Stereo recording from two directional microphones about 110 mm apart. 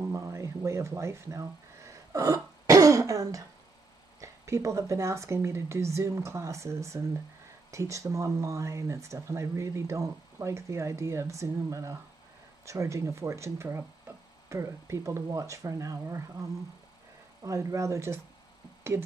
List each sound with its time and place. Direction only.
0.0 s a sound: 25° right (ahead or behind)
4.2 s speech: 30° right (ahead or behind)
17.4 s speech: 30° right (ahead or behind)